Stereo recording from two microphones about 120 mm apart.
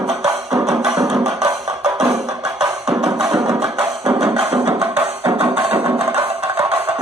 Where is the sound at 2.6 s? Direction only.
5° right (ahead or behind).